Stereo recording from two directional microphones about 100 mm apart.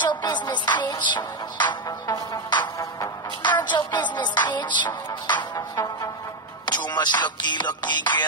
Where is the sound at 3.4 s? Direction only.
50° left (ahead or behind).